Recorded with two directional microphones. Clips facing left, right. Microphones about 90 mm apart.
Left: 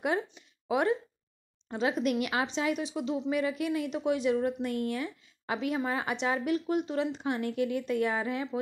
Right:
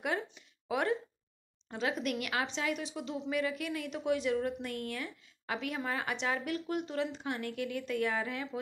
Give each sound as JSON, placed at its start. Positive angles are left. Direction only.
{"t": 0.0, "sound": "a woman's voice", "side_deg": 20}